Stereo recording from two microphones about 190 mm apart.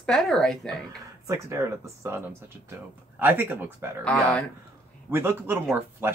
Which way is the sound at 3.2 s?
10° right (ahead or behind).